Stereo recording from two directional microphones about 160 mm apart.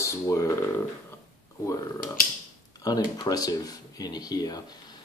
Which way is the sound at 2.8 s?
25° left (ahead or behind).